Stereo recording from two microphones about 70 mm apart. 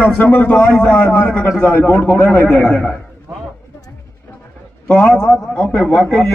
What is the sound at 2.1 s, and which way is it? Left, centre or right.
Speech, left.